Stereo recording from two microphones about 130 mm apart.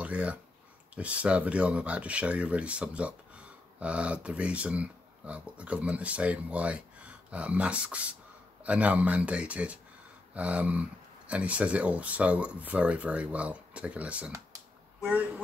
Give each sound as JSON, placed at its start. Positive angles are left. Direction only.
{"t": 0.0, "sound": "speech", "side_deg": -10}